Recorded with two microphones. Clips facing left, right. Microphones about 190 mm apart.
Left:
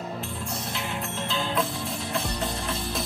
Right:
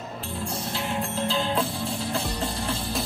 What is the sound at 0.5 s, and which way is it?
Music, 30° right (ahead or behind).